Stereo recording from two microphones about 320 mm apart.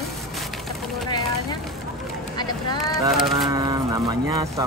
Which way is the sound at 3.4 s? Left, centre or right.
Centre.